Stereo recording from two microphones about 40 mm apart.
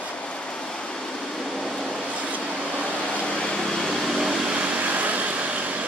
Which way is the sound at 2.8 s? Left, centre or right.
Left.